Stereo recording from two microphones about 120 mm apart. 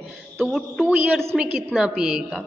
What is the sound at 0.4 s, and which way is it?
A woman's voice, centre (ahead or behind).